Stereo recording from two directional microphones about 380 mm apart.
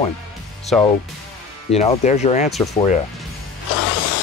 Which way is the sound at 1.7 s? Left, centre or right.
Centre.